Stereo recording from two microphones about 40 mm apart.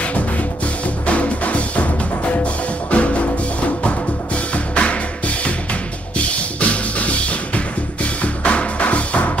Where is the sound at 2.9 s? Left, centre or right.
Left.